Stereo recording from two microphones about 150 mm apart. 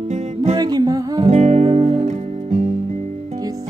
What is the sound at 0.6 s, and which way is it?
Music, 25° right (ahead or behind).